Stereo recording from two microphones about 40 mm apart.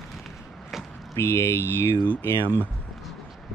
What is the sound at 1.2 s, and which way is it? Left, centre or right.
Speech, left.